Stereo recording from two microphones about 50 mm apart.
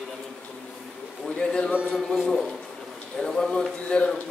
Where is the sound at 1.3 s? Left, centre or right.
Centre.